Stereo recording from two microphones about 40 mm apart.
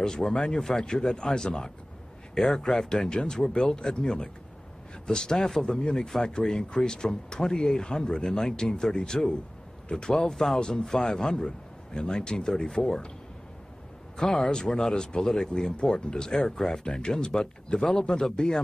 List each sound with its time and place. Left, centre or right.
0.0 s speech: centre
14.1 s speech: centre